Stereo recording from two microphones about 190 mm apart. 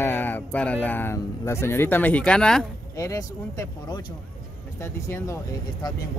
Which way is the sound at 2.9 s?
15° left (ahead or behind).